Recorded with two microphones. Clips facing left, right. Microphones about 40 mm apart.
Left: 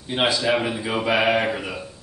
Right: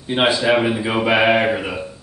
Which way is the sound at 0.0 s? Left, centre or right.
Centre.